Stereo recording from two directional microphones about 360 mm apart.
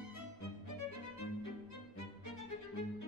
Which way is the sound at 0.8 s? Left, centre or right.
Left.